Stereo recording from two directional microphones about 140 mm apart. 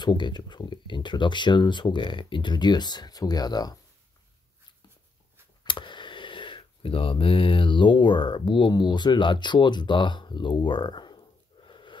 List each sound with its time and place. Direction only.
0.0 s speech: 30° left (ahead or behind)
5.6 s speech: 35° left (ahead or behind)